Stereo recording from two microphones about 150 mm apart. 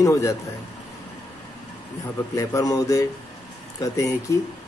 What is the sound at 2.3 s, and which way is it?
Speech, 20° left (ahead or behind).